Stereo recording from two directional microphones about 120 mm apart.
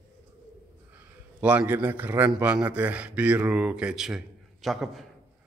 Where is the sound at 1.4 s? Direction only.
15° right (ahead or behind).